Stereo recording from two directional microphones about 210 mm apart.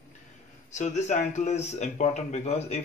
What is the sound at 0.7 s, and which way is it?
Speech, 35° left (ahead or behind).